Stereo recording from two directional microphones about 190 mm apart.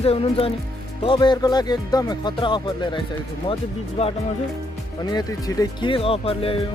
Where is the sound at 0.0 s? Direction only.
30° left (ahead or behind).